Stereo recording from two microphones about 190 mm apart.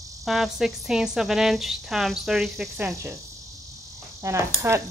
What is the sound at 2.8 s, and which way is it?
Speech, 15° right (ahead or behind).